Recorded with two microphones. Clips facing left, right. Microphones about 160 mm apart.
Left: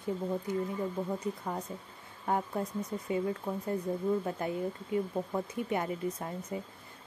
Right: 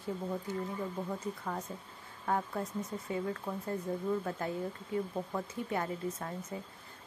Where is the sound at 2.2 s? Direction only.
20° left (ahead or behind).